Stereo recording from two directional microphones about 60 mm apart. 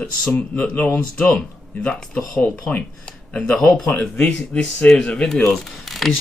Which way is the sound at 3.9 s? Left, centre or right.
Left.